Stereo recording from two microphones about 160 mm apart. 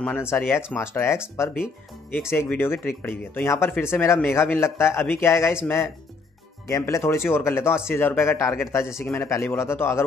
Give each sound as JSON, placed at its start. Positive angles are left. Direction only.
{"t": 0.0, "sound": "a man's voice", "side_deg": 10}
{"t": 6.7, "sound": "a man's voice", "side_deg": 20}